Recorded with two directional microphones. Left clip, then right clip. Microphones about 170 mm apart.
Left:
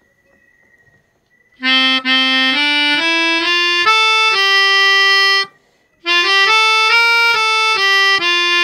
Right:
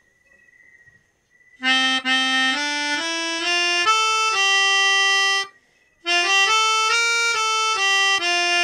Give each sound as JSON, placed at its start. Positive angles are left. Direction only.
{"t": 1.7, "sound": "music", "side_deg": 15}
{"t": 6.0, "sound": "harmonica", "side_deg": 20}